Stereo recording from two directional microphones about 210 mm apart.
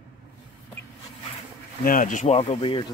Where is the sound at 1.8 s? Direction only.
40° left (ahead or behind).